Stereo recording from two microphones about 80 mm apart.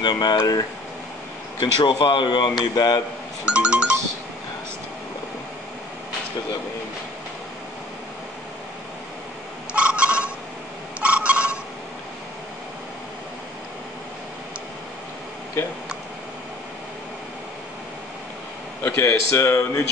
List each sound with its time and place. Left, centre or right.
0.0 s speech: left
1.6 s speech: left
3.4 s music: centre
9.8 s telephone: centre
11.0 s a sound: centre
18.9 s speech: left